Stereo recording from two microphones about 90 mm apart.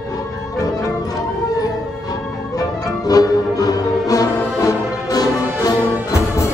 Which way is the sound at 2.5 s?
45° left (ahead or behind).